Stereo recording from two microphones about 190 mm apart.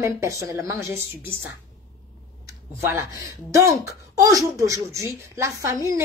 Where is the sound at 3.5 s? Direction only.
15° right (ahead or behind).